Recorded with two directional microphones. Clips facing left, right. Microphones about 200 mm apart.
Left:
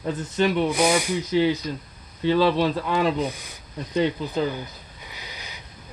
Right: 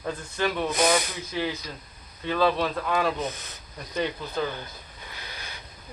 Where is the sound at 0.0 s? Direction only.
20° left (ahead or behind).